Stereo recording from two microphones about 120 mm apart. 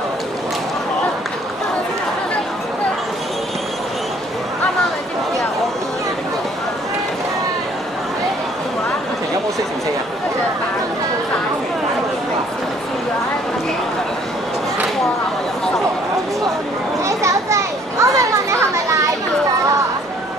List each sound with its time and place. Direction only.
17.0 s children playing: 25° right (ahead or behind)